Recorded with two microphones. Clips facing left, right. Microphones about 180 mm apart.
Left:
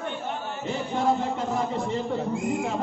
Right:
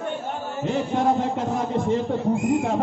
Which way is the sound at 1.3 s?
45° right (ahead or behind).